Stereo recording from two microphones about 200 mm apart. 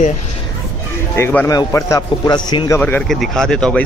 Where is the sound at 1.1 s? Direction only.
10° left (ahead or behind).